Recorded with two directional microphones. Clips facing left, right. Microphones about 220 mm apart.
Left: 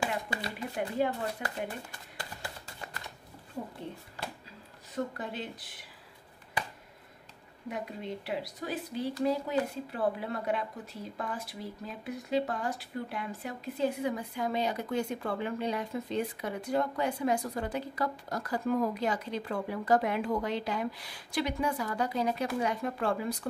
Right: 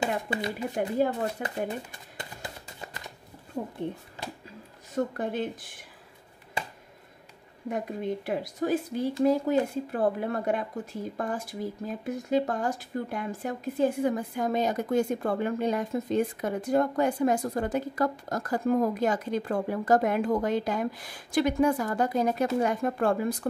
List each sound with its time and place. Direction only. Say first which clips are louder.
0.0 s speech: right 5 dB; 20° right (ahead or behind)
0.7 s speech: right 4 dB; 45° right (ahead or behind)
1.4 s speech: right 5 dB; 20° right (ahead or behind)
4.2 s a sound: even; 20° right (ahead or behind)
4.9 s speech: right 7 dB; 50° right (ahead or behind)
7.7 s speech: right 7 dB; 50° right (ahead or behind)